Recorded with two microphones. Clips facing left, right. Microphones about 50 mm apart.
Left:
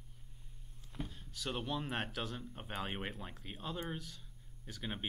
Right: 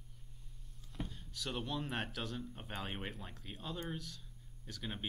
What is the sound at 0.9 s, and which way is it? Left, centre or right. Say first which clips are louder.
Speech: even; centre.